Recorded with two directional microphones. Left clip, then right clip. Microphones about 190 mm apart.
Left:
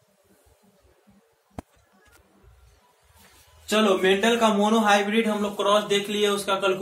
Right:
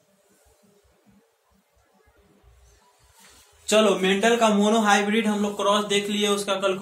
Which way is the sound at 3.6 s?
60° right (ahead or behind).